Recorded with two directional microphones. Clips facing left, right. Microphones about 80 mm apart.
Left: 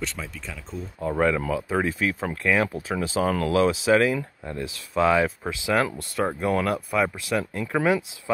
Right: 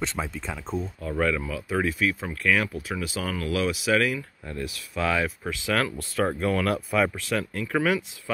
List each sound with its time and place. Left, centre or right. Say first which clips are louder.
0.0 s speech: right 3 dB; right
1.0 s speech: left 5 dB; left
5.9 s speech: even; centre
7.3 s speech: left 2 dB; left